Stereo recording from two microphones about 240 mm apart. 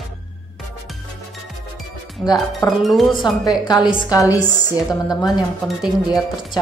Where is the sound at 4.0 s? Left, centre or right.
Centre.